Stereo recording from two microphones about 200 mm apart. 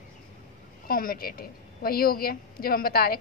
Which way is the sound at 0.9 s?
45° left (ahead or behind).